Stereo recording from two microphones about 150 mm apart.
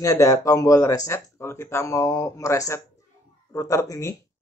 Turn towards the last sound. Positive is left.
turn(degrees=20)  # may be behind; listen again after turning